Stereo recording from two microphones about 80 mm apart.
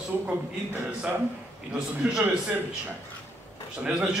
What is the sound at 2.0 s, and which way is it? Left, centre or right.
Speech, centre.